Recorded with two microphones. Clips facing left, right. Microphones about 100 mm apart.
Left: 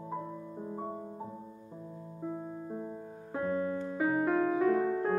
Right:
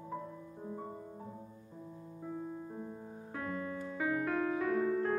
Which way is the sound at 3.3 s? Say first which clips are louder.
Left 8 dB; 30° left (ahead or behind).